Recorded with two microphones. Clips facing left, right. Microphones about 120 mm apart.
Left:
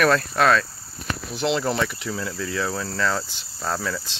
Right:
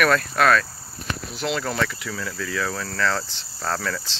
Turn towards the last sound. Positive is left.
turn(degrees=15)  # may be behind; listen again after turning